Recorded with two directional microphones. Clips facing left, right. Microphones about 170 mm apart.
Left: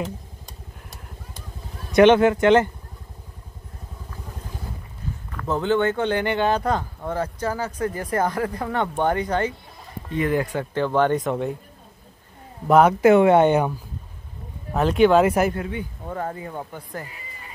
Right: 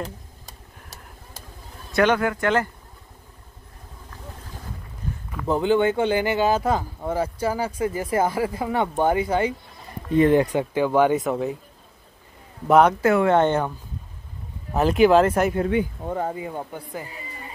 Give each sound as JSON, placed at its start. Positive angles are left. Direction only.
{"t": 0.0, "sound": "vehicle", "side_deg": 0}
{"t": 1.9, "sound": "speech", "side_deg": 20}
{"t": 5.3, "sound": "speech", "side_deg": -10}
{"t": 10.1, "sound": "speech", "side_deg": -25}
{"t": 12.6, "sound": "speech", "side_deg": 0}
{"t": 13.0, "sound": "speech", "side_deg": 20}
{"t": 14.7, "sound": "speech", "side_deg": -5}
{"t": 16.0, "sound": "speech", "side_deg": -20}